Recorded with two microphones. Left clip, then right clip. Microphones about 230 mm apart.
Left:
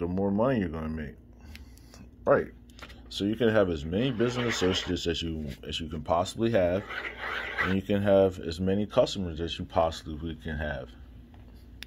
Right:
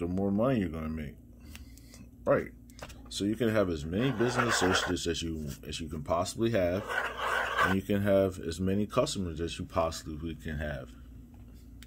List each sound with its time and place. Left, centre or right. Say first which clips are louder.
0.0 s speech: left 3 dB; centre
2.3 s speech: left 4 dB; centre
6.9 s speech: right 3 dB; right
7.8 s speech: left 4 dB; centre